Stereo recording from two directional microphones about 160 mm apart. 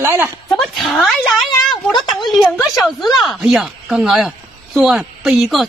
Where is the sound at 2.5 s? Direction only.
15° left (ahead or behind).